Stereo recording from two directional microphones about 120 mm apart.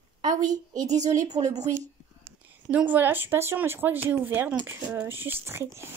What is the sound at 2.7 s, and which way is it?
Speech, 15° right (ahead or behind).